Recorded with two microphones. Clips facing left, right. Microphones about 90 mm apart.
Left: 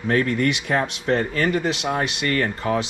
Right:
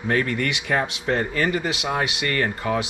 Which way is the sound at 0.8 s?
15° right (ahead or behind).